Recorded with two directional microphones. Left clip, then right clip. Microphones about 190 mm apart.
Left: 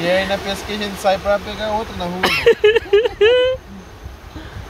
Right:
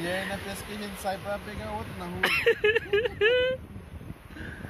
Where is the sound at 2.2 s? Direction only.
10° left (ahead or behind).